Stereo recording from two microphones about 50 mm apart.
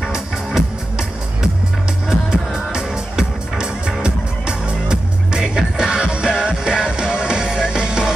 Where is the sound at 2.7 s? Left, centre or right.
Centre.